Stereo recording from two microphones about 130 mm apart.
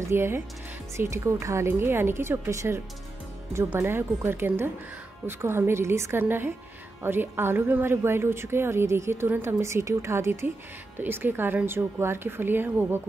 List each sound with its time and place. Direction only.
0.1 s a woman's voice: 20° right (ahead or behind)